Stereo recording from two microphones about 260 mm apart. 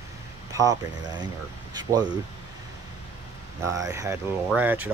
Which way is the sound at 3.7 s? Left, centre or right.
Centre.